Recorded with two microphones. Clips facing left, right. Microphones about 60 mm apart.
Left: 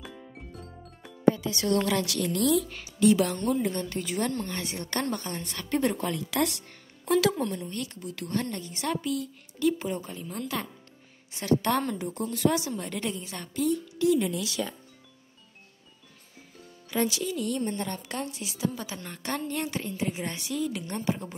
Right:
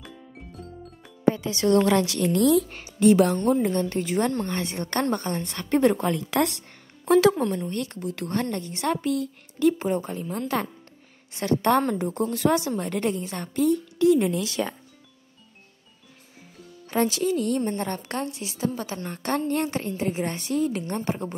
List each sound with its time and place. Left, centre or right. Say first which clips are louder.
1.3 s a woman's voice: right 6 dB; right
16.9 s a woman's voice: right 5 dB; right